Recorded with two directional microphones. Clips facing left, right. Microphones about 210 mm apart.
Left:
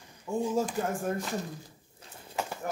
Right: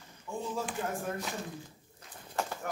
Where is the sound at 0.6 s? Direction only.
45° left (ahead or behind).